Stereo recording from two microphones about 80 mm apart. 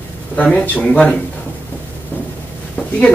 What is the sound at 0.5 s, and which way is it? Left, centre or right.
Speech, centre.